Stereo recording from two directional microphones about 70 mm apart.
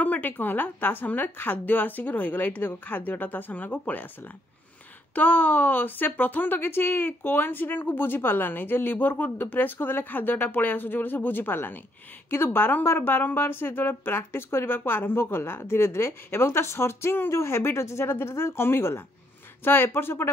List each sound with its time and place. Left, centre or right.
0.0 s a woman's voice: left
5.1 s a woman's voice: left